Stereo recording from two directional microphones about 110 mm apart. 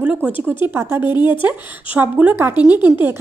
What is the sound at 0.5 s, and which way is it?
A woman's voice, 20° right (ahead or behind).